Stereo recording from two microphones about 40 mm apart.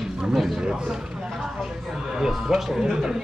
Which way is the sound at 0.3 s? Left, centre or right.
Centre.